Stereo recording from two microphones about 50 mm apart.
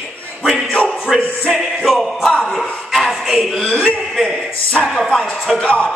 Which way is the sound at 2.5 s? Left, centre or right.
Centre.